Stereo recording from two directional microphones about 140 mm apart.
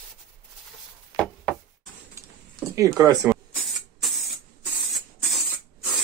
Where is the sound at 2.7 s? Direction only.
20° right (ahead or behind).